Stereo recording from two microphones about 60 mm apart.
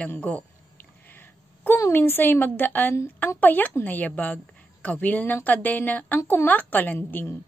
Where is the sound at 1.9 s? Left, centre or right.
Left.